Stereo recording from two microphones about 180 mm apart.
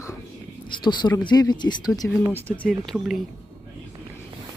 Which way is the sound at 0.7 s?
25° left (ahead or behind).